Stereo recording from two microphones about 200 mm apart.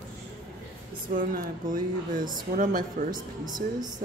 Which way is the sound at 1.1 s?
45° right (ahead or behind).